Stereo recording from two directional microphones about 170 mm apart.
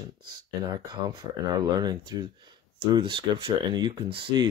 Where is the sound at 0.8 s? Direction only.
25° right (ahead or behind).